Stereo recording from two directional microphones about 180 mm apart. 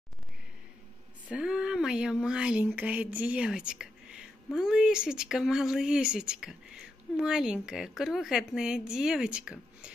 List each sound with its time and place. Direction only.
1.3 s speech: 5° right (ahead or behind)